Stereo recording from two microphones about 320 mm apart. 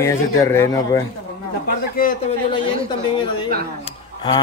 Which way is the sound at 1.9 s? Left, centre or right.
Left.